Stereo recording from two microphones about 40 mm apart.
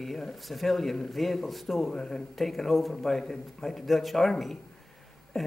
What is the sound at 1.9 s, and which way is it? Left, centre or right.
Speech, centre.